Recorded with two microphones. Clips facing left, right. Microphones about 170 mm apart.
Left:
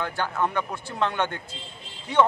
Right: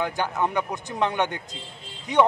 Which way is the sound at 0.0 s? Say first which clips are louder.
Right 1 dB; 15° right (ahead or behind).